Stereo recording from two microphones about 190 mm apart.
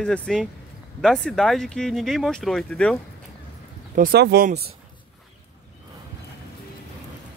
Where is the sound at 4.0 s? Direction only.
55° right (ahead or behind).